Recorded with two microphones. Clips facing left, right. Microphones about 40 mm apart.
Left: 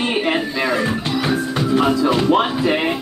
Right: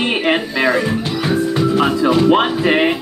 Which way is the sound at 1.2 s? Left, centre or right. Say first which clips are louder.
Right 4 dB; centre.